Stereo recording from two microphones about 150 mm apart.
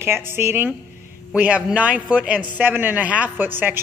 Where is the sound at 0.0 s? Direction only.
15° right (ahead or behind).